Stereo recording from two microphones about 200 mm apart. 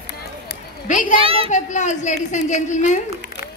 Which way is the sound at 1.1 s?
30° right (ahead or behind).